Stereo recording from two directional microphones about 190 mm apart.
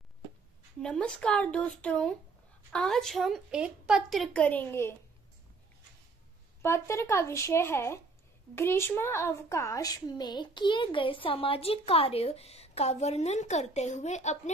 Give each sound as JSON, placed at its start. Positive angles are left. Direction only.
{"t": 0.8, "sound": "a woman's voice", "side_deg": 5}
{"t": 6.6, "sound": "a woman's voice", "side_deg": 15}